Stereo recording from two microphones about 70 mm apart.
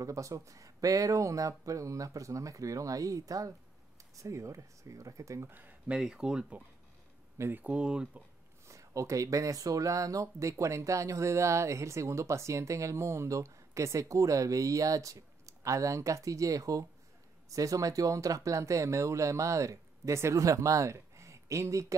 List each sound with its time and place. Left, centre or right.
0.0 s speech: right
5.5 s speech: right
5.9 s speech: centre
7.3 s speech: right
7.6 s speech: centre
8.6 s speech: right